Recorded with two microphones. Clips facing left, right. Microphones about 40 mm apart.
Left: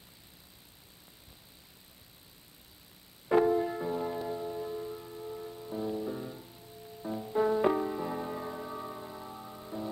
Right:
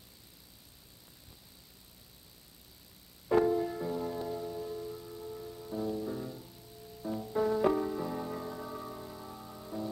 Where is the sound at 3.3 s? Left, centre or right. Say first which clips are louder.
Left 2 dB; left.